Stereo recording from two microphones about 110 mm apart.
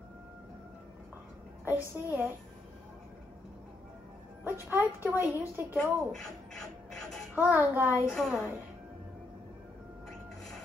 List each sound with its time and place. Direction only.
1.6 s speech: 20° right (ahead or behind)
4.5 s speech: 20° right (ahead or behind)
5.8 s speech: 5° left (ahead or behind)
7.3 s a child's voice: 15° right (ahead or behind)
8.1 s a woman's voice: 5° left (ahead or behind)